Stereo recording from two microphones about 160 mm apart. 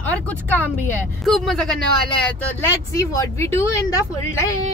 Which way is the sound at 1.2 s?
Centre (ahead or behind).